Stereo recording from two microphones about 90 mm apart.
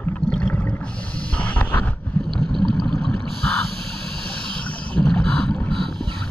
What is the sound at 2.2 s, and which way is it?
Boat, 5° left (ahead or behind).